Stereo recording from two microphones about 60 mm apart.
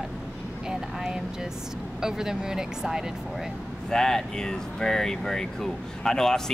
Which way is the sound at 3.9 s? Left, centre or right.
Centre.